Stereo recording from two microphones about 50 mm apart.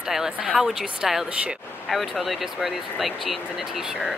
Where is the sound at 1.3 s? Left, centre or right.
Right.